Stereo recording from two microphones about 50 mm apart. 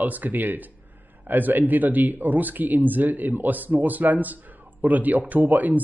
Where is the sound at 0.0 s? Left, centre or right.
Right.